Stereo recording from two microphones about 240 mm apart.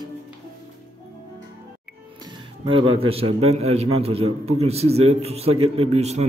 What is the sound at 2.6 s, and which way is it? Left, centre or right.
A man's voice, right.